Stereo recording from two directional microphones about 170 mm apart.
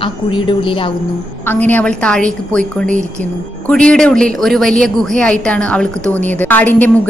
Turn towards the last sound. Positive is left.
turn(degrees=10)  # may be behind; listen again after turning